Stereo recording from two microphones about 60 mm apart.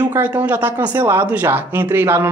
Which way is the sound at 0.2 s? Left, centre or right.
Right.